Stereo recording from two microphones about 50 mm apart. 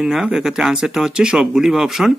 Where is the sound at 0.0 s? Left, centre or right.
Centre.